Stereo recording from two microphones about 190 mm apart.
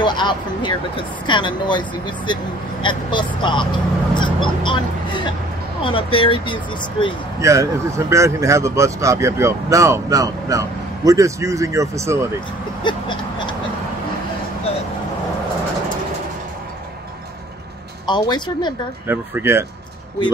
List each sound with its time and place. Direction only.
0.0 s speech: 25° left (ahead or behind)
2.8 s speech: 25° left (ahead or behind)
7.3 s speech: 15° right (ahead or behind)
12.8 s a sound: 25° left (ahead or behind)
18.0 s speech: 25° left (ahead or behind)
19.0 s speech: 10° right (ahead or behind)